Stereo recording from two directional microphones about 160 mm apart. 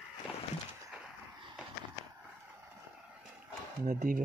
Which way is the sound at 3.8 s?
55° right (ahead or behind).